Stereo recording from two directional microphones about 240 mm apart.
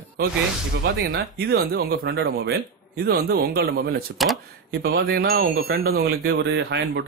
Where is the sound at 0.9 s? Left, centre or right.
Right.